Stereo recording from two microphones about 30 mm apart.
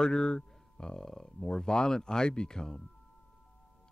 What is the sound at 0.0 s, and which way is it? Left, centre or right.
Speech, left.